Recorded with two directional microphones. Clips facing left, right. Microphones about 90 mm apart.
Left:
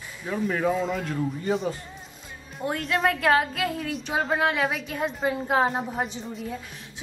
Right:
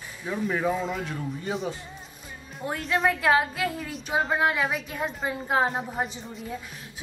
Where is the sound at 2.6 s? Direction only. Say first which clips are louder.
Left 3 dB; 30° left (ahead or behind).